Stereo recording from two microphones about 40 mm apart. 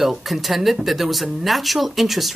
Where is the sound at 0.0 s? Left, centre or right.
Centre.